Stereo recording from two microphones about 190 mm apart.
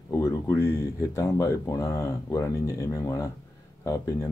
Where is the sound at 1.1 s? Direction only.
20° left (ahead or behind).